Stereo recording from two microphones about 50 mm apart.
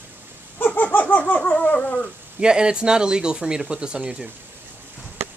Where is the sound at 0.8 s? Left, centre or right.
Left.